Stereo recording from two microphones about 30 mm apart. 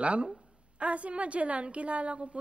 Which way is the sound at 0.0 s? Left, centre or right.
Right.